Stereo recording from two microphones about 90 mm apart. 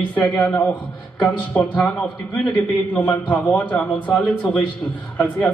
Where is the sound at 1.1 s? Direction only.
10° left (ahead or behind).